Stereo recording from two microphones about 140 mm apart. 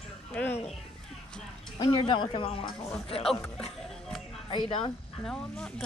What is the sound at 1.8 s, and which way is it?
Speech, 35° left (ahead or behind).